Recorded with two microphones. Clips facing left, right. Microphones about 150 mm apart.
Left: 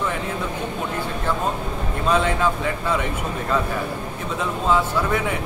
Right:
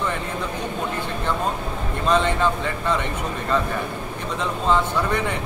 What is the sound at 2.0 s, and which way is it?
Speech, 5° left (ahead or behind).